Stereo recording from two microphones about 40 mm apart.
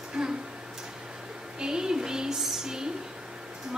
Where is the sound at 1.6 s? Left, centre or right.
Centre.